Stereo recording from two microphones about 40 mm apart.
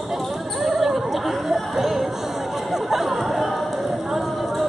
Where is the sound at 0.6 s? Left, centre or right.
Centre.